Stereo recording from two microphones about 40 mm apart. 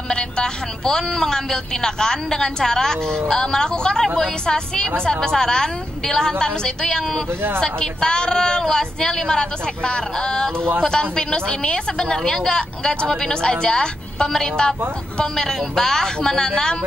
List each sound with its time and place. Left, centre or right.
0.1 s speech: centre
12.2 s speech: centre
12.4 s speech: centre